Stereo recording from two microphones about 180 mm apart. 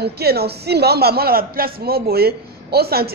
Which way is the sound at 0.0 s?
60° right (ahead or behind).